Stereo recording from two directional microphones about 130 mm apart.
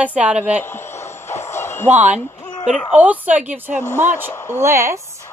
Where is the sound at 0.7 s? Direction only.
20° left (ahead or behind).